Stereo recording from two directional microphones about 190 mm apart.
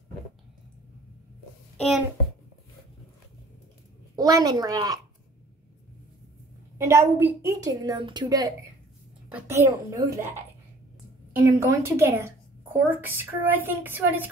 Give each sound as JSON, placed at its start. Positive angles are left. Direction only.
{"t": 4.1, "sound": "a woman's voice", "side_deg": -20}
{"t": 6.8, "sound": "a woman's voice", "side_deg": -15}